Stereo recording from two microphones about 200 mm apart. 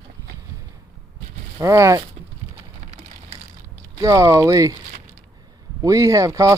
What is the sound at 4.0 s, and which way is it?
Speech, 15° right (ahead or behind).